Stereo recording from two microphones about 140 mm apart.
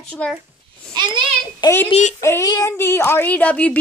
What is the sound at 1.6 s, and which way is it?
A woman's voice, 15° left (ahead or behind).